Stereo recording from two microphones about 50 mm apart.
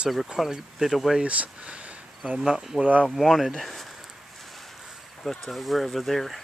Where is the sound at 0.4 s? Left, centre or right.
Centre.